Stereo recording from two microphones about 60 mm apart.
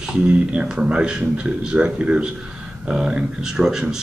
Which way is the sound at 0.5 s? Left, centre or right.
Centre.